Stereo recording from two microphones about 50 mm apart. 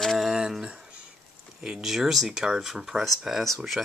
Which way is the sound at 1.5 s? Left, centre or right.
Centre.